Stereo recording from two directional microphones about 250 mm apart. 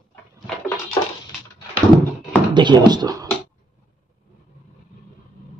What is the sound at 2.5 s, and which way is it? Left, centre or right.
Speech, centre.